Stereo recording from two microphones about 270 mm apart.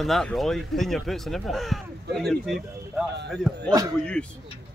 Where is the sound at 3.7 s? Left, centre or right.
Centre.